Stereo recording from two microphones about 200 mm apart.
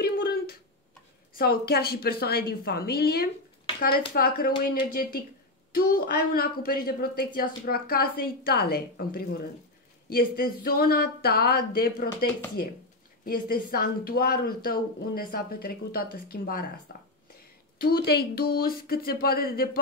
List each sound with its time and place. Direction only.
0.0 s a sound: 50° left (ahead or behind)
1.4 s speech: 50° left (ahead or behind)
17.7 s speech: 50° left (ahead or behind)